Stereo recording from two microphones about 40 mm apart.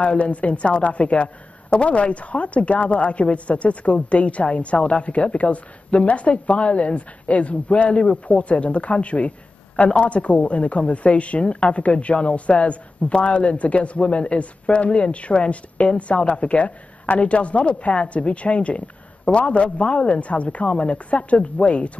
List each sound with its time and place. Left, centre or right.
0.0 s speech: left